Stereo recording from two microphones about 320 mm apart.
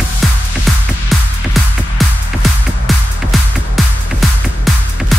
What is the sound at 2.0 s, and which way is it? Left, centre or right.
Music, centre.